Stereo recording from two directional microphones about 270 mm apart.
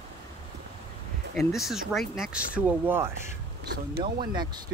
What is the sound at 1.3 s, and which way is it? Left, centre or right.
Speech, centre.